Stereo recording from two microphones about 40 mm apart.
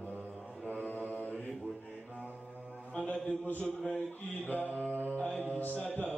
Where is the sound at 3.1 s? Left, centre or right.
Left.